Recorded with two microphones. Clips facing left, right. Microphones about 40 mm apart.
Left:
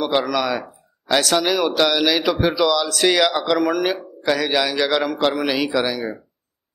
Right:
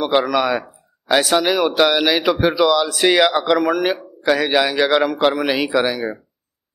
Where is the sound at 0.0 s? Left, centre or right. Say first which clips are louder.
Right 3 dB; centre.